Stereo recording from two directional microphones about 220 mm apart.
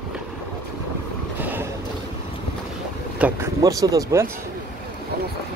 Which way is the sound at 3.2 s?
10° right (ahead or behind).